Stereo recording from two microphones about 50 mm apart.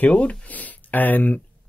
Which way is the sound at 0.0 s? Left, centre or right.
Left.